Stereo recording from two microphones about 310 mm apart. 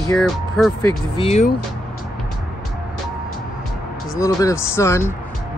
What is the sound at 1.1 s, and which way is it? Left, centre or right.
Speech, centre.